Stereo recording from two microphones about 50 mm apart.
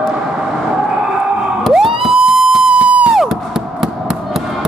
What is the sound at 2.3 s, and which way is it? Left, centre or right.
Music, centre.